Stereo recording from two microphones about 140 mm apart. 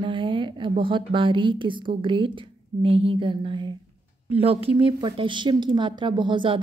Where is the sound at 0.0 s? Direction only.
35° right (ahead or behind).